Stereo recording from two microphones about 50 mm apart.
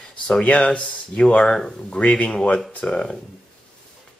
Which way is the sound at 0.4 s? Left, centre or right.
Left.